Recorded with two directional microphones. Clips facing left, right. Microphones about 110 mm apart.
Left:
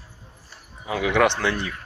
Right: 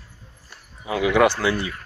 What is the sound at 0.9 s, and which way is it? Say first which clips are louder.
Speech: right 2 dB; 5° right (ahead or behind).